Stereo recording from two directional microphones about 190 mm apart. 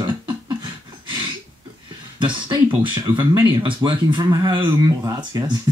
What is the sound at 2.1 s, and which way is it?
Speech, 25° right (ahead or behind).